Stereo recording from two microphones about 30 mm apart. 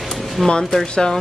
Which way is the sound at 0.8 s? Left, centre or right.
Left.